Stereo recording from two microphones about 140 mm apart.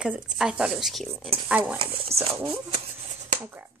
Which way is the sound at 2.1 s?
50° right (ahead or behind).